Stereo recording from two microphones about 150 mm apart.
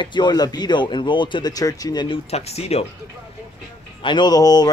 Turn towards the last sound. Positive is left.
turn(degrees=25)  # may be behind; listen again after turning